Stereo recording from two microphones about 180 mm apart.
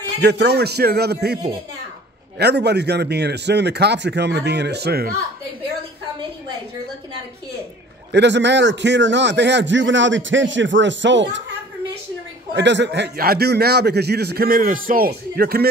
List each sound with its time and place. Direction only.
0.2 s a man's voice: 65° right (ahead or behind)
8.1 s a man's voice: 75° right (ahead or behind); by 11.4 s 90° right
12.5 s a man's voice: 80° right; by 15.7 s 55° right (ahead or behind)